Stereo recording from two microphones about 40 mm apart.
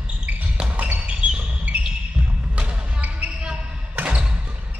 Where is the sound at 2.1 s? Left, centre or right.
Right.